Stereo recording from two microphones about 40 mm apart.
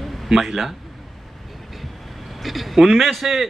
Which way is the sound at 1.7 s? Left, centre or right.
Centre.